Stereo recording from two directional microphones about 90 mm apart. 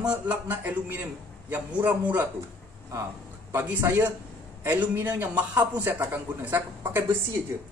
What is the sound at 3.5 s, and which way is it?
Speech, 25° right (ahead or behind).